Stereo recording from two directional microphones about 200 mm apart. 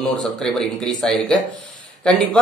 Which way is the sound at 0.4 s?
5° left (ahead or behind).